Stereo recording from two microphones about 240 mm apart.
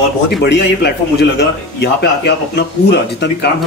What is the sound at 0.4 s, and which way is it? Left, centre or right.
Speech, left.